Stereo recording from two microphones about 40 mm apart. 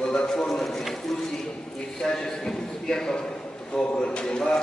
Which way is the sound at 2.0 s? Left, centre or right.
Centre.